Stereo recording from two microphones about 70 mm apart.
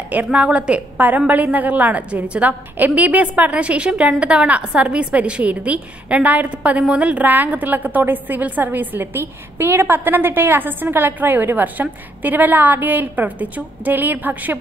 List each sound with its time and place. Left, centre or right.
0.1 s a woman's voice: centre